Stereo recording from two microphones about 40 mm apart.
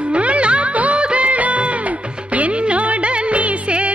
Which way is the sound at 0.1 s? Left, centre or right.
Right.